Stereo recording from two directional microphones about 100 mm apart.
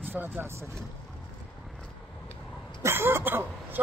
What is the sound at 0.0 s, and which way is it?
Speech, 20° right (ahead or behind).